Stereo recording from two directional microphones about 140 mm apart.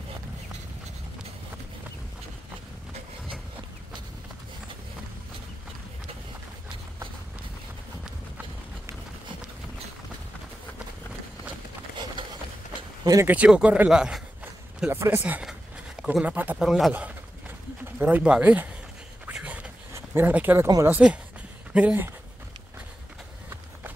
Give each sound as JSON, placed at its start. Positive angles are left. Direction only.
{"t": 13.0, "sound": "speech", "side_deg": -25}
{"t": 13.3, "sound": "a man's voice", "side_deg": -10}
{"t": 14.9, "sound": "a man's voice", "side_deg": -20}
{"t": 19.2, "sound": "a sound", "side_deg": -10}
{"t": 19.9, "sound": "speech", "side_deg": -15}
{"t": 20.6, "sound": "speech", "side_deg": -25}
{"t": 20.9, "sound": "a man's voice", "side_deg": -10}